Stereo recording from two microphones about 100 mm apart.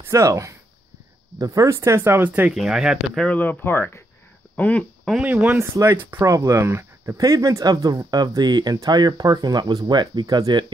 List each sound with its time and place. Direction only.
0.0 s speech: 30° right (ahead or behind)
2.5 s speech: 5° right (ahead or behind)
3.2 s speech: 15° left (ahead or behind)
5.2 s speech: 15° right (ahead or behind); by 10.6 s 45° right (ahead or behind)